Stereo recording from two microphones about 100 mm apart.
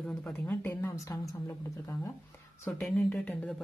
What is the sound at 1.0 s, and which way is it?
A woman's voice, 35° left (ahead or behind).